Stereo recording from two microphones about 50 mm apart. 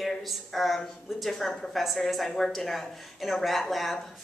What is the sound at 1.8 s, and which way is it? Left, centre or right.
Speech, centre.